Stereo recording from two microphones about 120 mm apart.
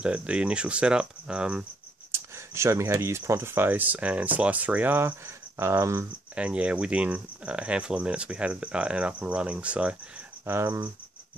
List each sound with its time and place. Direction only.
0.0 s speech: 10° right (ahead or behind)
2.1 s speech: 20° right (ahead or behind)
6.3 s speech: 10° right (ahead or behind)